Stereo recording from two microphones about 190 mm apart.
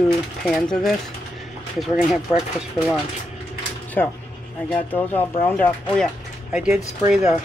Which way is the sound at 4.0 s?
10° left (ahead or behind).